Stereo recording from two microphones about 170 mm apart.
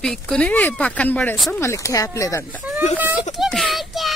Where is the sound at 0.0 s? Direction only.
5° left (ahead or behind).